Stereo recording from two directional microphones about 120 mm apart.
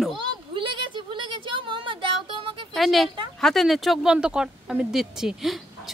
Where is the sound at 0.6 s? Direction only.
45° right (ahead or behind).